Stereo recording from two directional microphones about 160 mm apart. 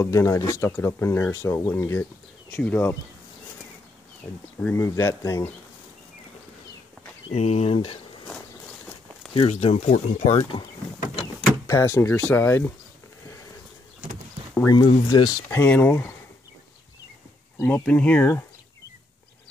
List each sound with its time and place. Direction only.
0.0 s speech: 15° left (ahead or behind)
4.2 s speech: 5° left (ahead or behind)
7.2 s speech: 40° left (ahead or behind)
9.3 s speech: 35° left (ahead or behind)
9.8 s speech: 50° left (ahead or behind)
10.4 s speech: 25° left (ahead or behind)
15.0 s speech: 25° left (ahead or behind)
15.6 s speech: 15° left (ahead or behind)
17.6 s speech: 20° left (ahead or behind)